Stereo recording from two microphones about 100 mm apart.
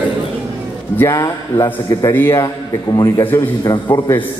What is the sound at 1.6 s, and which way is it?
Mantra, 40° left (ahead or behind).